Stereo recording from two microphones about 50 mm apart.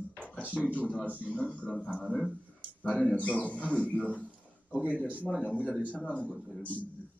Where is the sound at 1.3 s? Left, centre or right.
Left.